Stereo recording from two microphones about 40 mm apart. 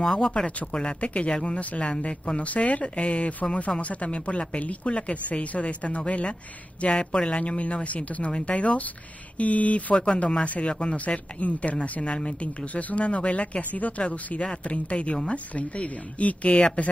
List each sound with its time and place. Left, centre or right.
0.0 s speech: centre
0.7 s speech: left
9.9 s speech: left